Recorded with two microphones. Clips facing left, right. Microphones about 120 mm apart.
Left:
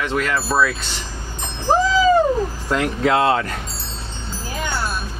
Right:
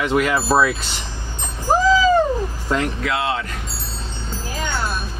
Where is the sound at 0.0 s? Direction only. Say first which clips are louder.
Right 3 dB; 10° right (ahead or behind).